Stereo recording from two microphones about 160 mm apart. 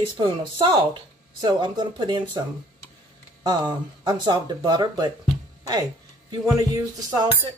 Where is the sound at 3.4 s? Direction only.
25° right (ahead or behind).